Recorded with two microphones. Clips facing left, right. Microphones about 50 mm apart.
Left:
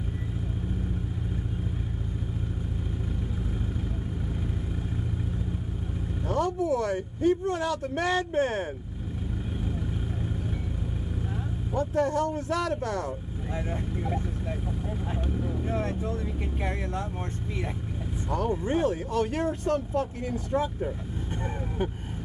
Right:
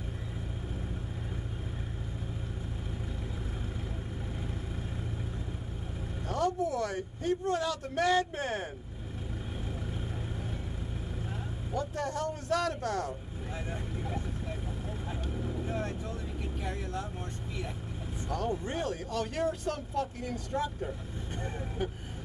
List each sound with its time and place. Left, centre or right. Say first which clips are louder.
6.2 s speech: left 4 dB; left
11.7 s speech: left 8 dB; left
14.9 s speech: left 6 dB; centre
15.6 s speech: left 6 dB; left
18.3 s speech: left 6 dB; left